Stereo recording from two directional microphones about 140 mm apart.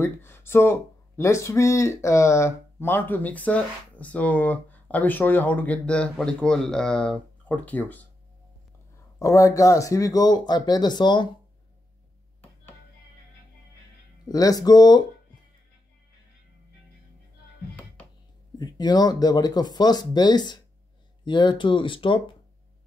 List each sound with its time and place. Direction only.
0.0 s speech: 15° left (ahead or behind)
9.2 s speech: 25° left (ahead or behind)
14.3 s speech: 25° left (ahead or behind)
18.6 s speech: 30° left (ahead or behind)